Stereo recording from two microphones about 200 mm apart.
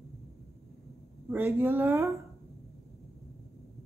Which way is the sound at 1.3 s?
10° right (ahead or behind).